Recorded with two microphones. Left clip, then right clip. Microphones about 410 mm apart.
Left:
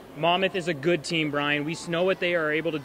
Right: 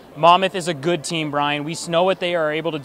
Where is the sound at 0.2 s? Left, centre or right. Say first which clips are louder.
Right 9 dB; right.